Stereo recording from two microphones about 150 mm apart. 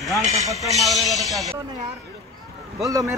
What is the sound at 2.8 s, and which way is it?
Speech, 25° right (ahead or behind).